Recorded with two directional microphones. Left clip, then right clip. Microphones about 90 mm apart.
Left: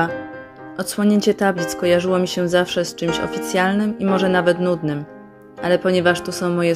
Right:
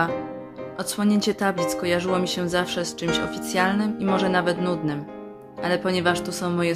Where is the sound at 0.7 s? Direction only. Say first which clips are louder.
Left 5 dB; 25° left (ahead or behind).